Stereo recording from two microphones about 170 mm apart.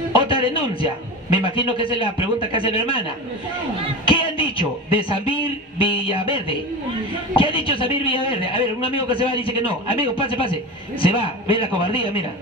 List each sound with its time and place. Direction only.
0.1 s a man's voice: 30° left (ahead or behind)
4.0 s a man's voice: 30° left (ahead or behind)